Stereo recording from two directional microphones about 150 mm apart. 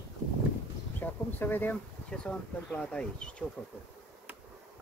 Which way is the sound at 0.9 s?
15° left (ahead or behind).